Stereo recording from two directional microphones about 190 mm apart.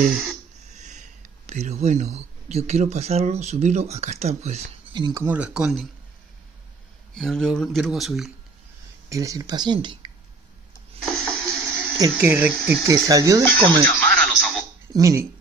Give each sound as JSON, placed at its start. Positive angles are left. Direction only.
{"t": 0.7, "sound": "speech", "side_deg": -40}
{"t": 4.9, "sound": "speech", "side_deg": -20}
{"t": 7.2, "sound": "speech", "side_deg": 0}
{"t": 9.1, "sound": "speech", "side_deg": -15}
{"t": 11.1, "sound": "a sound", "side_deg": 5}
{"t": 12.0, "sound": "speech", "side_deg": -10}
{"t": 13.4, "sound": "music", "side_deg": 5}
{"t": 14.9, "sound": "speech", "side_deg": -15}